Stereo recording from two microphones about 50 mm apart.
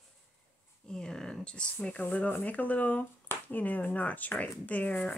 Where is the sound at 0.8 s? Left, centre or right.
Centre.